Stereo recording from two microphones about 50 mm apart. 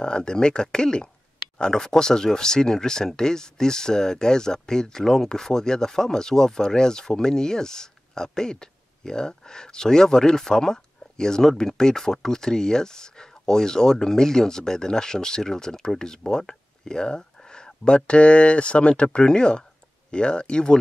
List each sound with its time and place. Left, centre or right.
0.0 s speech: centre